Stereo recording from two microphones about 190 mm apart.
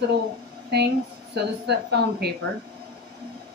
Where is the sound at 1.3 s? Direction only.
60° right (ahead or behind).